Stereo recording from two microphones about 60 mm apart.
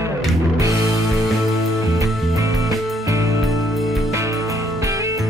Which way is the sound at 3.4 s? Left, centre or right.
Centre.